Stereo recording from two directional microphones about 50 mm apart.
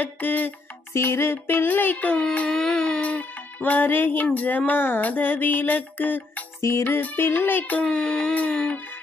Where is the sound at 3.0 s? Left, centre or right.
Left.